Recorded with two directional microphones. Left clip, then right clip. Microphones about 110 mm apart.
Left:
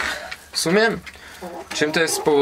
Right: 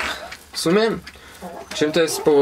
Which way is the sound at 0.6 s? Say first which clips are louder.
Even; 5° left (ahead or behind).